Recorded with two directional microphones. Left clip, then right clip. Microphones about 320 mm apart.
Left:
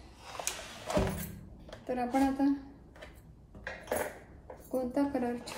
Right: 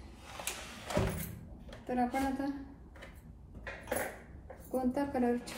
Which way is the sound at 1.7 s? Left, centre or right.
Centre.